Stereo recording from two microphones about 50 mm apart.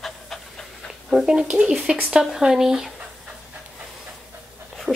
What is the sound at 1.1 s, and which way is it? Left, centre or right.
Speech, centre.